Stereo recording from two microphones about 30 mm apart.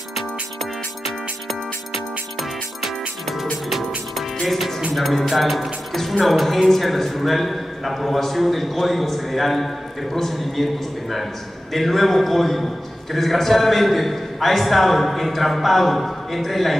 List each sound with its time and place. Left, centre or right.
4.5 s a man's voice: centre